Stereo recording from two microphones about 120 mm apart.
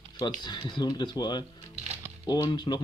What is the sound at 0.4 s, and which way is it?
Speech, 40° left (ahead or behind).